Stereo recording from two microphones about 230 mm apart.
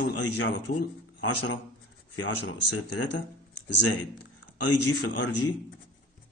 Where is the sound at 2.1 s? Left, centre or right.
Left.